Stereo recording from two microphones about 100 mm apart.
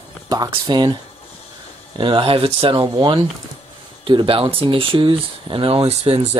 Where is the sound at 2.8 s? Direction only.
50° right (ahead or behind).